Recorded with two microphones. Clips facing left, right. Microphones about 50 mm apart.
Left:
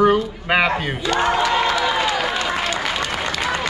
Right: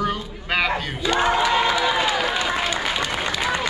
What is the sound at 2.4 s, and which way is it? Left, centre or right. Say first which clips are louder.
Applause: left 1 dB; centre.